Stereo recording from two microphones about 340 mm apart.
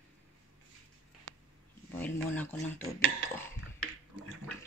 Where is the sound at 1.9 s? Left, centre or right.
Centre.